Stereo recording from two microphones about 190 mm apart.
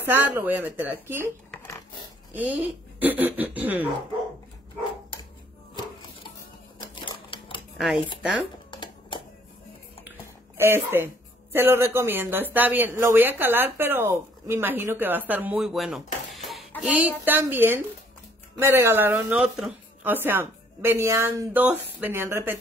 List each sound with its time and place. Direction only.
0.0 s speech: 10° right (ahead or behind)
1.5 s a sound: 10° left (ahead or behind)
2.3 s speech: 10° right (ahead or behind)
7.0 s typewriter: 25° left (ahead or behind)
7.7 s a sound: 5° right (ahead or behind)
8.6 s a sound: 25° left (ahead or behind)
10.6 s speech: 10° right (ahead or behind)
16.4 s music: centre (ahead or behind)
17.2 s speech: 10° right (ahead or behind)